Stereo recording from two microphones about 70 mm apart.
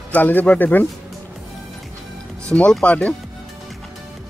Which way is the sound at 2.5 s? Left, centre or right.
Centre.